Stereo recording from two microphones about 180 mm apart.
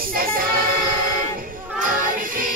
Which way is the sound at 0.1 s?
50° right (ahead or behind).